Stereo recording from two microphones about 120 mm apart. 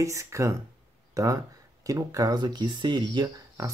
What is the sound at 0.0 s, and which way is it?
Speech, 25° right (ahead or behind).